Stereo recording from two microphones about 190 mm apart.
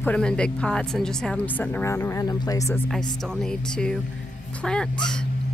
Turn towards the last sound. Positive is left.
turn(degrees=5)  # may be behind; listen again after turning